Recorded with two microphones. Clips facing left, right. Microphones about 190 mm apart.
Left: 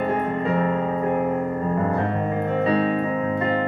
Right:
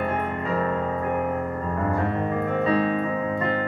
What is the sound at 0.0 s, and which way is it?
Music, 25° left (ahead or behind).